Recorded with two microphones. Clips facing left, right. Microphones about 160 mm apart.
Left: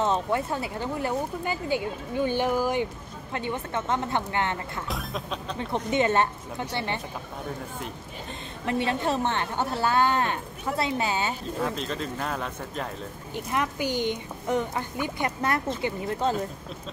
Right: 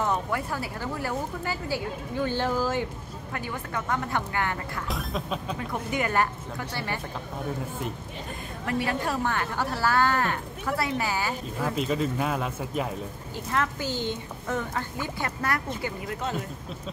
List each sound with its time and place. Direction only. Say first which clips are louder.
0.0 s a woman's voice: left 2 dB; 25° left (ahead or behind)
4.8 s speech: right 1 dB; centre (ahead or behind)
5.6 s a woman's voice: left 7 dB; 25° left (ahead or behind)
8.6 s a woman's voice: left 2 dB; 25° left (ahead or behind)
11.7 s speech: right 5 dB; 5° right (ahead or behind)
13.5 s a woman's voice: left 1 dB; 15° left (ahead or behind)